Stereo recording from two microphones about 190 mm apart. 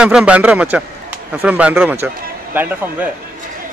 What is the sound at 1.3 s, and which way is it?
A man's voice, 5° right (ahead or behind).